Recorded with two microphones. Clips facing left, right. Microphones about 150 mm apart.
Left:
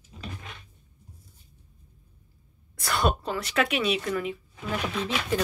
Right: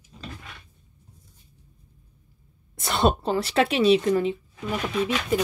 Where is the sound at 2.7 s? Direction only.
20° right (ahead or behind).